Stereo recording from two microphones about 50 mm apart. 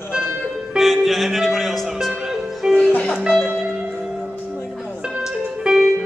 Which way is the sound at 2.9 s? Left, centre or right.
Left.